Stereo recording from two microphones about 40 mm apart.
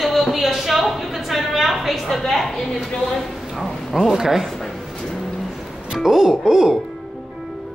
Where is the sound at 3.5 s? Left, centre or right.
Centre.